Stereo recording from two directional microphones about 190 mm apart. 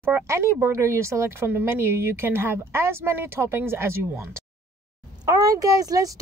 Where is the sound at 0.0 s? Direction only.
10° right (ahead or behind).